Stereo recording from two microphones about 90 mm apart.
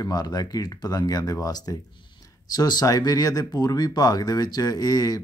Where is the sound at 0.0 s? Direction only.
45° left (ahead or behind).